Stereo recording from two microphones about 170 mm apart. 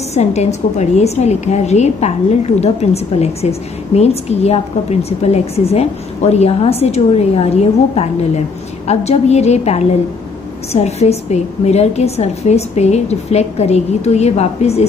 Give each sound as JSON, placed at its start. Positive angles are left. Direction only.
{"t": 0.1, "sound": "a woman's voice", "side_deg": 40}